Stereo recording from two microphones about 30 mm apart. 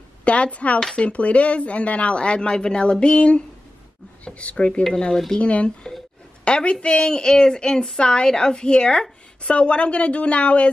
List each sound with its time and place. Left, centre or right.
0.2 s a woman's voice: left
5.1 s speech: centre
5.4 s a woman's voice: left
7.0 s a woman's voice: left